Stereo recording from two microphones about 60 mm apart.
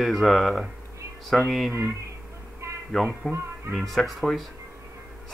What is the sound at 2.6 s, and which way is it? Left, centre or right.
Music, right.